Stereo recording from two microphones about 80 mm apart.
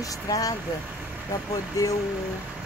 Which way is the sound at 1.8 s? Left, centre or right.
Left.